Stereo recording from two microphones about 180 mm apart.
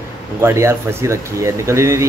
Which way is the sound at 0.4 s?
15° right (ahead or behind).